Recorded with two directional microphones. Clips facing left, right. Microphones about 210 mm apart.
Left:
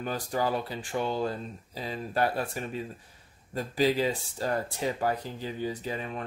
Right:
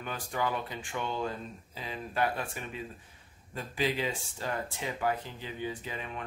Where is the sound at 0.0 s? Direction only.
35° left (ahead or behind).